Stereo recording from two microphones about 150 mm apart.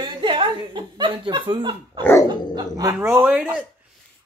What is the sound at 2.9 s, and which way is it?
Speech, 15° right (ahead or behind).